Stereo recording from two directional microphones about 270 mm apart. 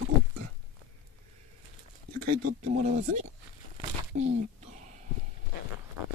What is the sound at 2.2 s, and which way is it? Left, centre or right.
Speech, right.